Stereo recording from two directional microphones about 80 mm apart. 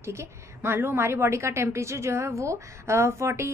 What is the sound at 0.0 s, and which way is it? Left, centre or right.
A woman's voice, right.